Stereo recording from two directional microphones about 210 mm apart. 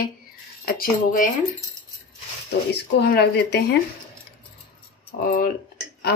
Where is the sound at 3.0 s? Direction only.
50° left (ahead or behind).